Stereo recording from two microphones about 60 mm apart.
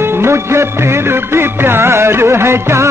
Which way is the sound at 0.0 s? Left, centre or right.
Right.